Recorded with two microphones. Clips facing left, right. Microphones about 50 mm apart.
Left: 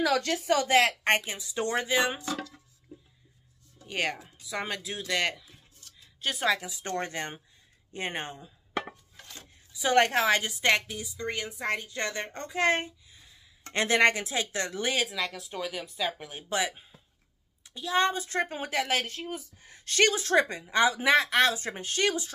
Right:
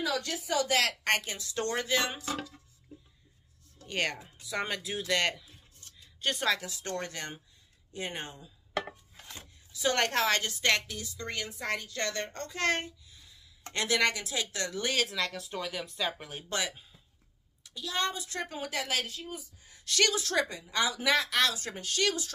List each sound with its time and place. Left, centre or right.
0.0 s a woman's voice: left
0.7 s a woman's voice: left
3.8 s speech: centre
5.9 s a sound: centre
6.8 s a woman's voice: left
9.7 s a woman's voice: centre
15.0 s speech: centre
16.7 s a sound: left
17.6 s a woman's voice: left
19.9 s a woman's voice: left